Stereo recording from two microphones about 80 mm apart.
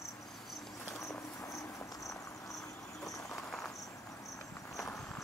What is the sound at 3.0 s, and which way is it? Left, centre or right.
Cricket, left.